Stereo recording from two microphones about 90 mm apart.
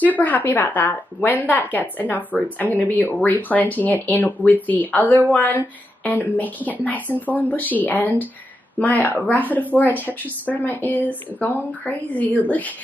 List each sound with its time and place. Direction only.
0.0 s speech: 20° left (ahead or behind)